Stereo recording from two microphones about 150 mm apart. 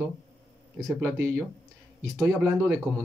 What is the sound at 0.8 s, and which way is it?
Speech, 5° left (ahead or behind).